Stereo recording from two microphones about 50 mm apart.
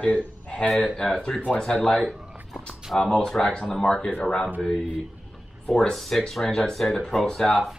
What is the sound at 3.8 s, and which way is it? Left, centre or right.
Speech, centre.